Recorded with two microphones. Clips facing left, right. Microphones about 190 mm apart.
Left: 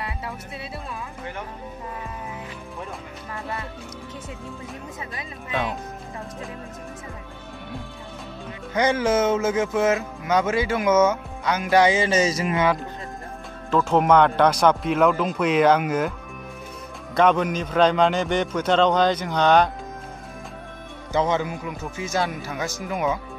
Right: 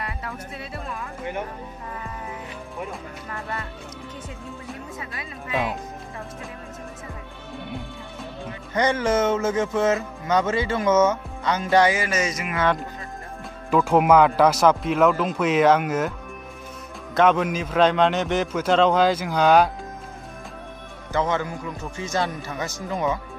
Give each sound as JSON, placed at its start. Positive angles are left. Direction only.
{"t": 5.5, "sound": "speech", "side_deg": -5}
{"t": 8.7, "sound": "speech", "side_deg": 5}
{"t": 11.8, "sound": "speech", "side_deg": 25}
{"t": 13.7, "sound": "speech", "side_deg": -10}
{"t": 17.1, "sound": "speech", "side_deg": 0}
{"t": 21.1, "sound": "speech", "side_deg": 15}
{"t": 21.9, "sound": "speech", "side_deg": 0}